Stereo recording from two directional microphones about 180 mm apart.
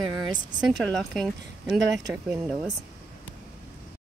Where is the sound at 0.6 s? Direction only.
Centre (ahead or behind).